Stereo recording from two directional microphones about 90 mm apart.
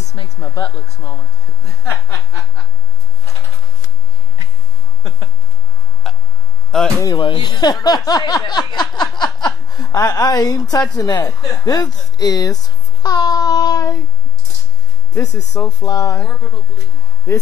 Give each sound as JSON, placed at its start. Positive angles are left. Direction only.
{"t": 0.4, "sound": "a woman's voice", "side_deg": 45}
{"t": 6.0, "sound": "a sound", "side_deg": 5}
{"t": 6.7, "sound": "speech", "side_deg": 5}
{"t": 7.2, "sound": "a woman's voice", "side_deg": 60}
{"t": 9.9, "sound": "a woman's voice", "side_deg": 40}
{"t": 12.6, "sound": "child singing", "side_deg": 45}
{"t": 15.1, "sound": "speech", "side_deg": 35}